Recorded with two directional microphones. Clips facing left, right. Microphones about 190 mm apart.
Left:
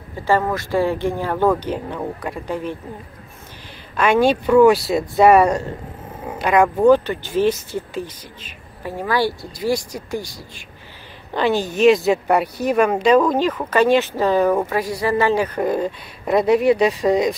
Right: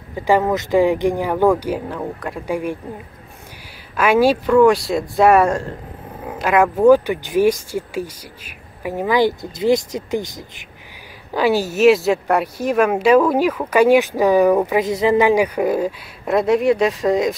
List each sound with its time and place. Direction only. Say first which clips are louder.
0.1 s speech: right 3 dB; 15° right (ahead or behind)
2.0 s speech: even; centre (ahead or behind)
2.4 s speech: right 5 dB; 10° right (ahead or behind)
3.9 s speech: right 1 dB; 5° right (ahead or behind)
4.5 s speech: left 3 dB; 5° left (ahead or behind); by 10.7 s 20° right (ahead or behind)
11.3 s speech: right 2 dB; 10° right (ahead or behind)